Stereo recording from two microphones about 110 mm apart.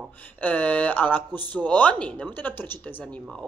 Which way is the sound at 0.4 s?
15° left (ahead or behind).